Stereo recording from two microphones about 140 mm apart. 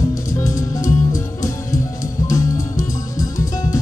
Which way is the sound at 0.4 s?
20° left (ahead or behind).